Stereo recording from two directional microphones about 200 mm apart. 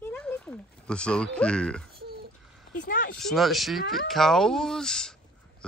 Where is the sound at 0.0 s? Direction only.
5° left (ahead or behind).